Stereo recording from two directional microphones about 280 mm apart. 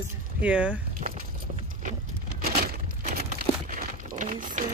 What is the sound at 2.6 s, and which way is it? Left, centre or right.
Crumpling, right.